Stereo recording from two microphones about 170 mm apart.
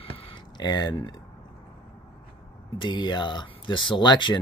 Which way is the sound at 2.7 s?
30° left (ahead or behind).